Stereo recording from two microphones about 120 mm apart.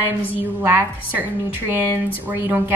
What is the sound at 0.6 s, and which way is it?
Speech, 15° right (ahead or behind).